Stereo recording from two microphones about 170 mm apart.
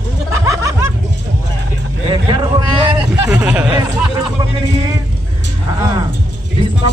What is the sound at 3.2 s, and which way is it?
Speech, 10° right (ahead or behind).